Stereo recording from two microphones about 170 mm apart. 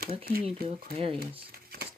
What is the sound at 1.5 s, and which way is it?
Crumpling, 65° right (ahead or behind).